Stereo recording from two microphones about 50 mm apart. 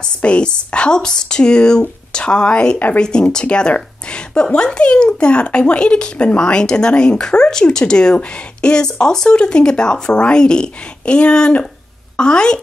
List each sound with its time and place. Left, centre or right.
0.0 s a woman's voice: left